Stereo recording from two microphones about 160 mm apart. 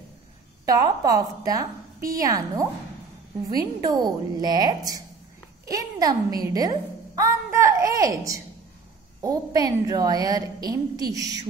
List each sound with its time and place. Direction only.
0.7 s a woman's voice: 25° right (ahead or behind)